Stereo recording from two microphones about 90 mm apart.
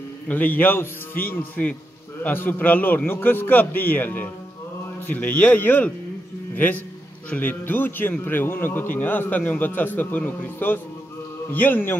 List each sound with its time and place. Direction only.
0.3 s a man's voice: 20° left (ahead or behind)